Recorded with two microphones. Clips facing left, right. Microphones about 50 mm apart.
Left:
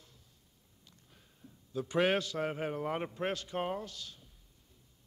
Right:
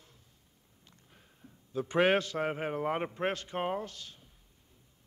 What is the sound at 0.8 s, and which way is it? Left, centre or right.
A man's voice, right.